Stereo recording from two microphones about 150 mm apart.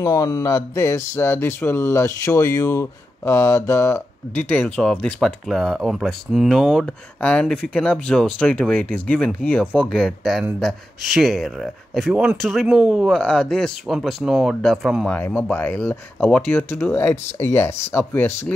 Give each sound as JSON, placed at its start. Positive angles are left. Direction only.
{"t": 0.0, "sound": "speech", "side_deg": 25}
{"t": 15.0, "sound": "speech", "side_deg": 10}